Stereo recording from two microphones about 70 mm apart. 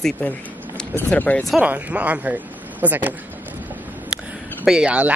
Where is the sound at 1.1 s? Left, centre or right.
Left.